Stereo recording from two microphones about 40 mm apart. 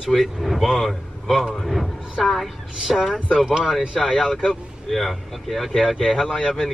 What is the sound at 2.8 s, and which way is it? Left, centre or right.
Speech, centre.